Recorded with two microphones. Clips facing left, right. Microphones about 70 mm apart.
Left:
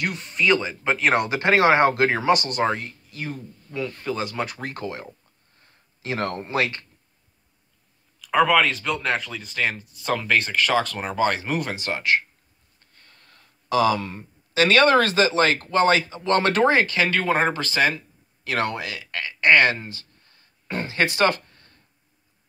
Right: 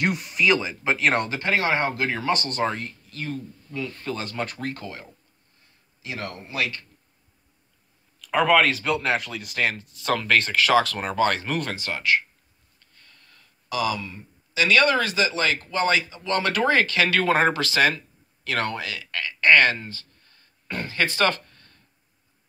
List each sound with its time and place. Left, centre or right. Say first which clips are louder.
0.2 s speech: left 1 dB; centre
1.4 s speech: left 10 dB; left
2.3 s speech: left 3 dB; centre
3.9 s speech: left 3 dB; centre
4.6 s speech: left 2 dB; left
6.0 s speech: left 7 dB; left
8.2 s speech: left 1 dB; centre; by 12.2 s left
12.9 s a sound: left 1 dB; left
15.6 s speech: left 4 dB; left
16.8 s speech: right 1 dB; centre
18.5 s speech: left 2 dB; centre
21.5 s a sound: even; left